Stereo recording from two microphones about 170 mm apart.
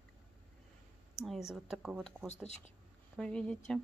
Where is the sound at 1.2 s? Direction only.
Centre (ahead or behind).